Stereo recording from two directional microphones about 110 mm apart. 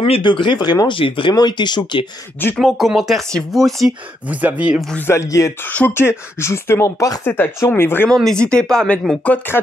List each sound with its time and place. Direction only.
0.2 s speech: 45° left (ahead or behind)
1.3 s speech: 40° left (ahead or behind)
2.5 s speech: centre (ahead or behind)
4.3 s speech: 15° right (ahead or behind)
4.9 s speech: 20° left (ahead or behind)
5.6 s speech: 15° left (ahead or behind)
8.1 s speech: 5° left (ahead or behind)